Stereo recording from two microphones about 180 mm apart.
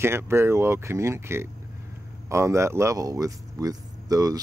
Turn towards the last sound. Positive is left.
turn(degrees=-20)  # may be behind; listen again after turning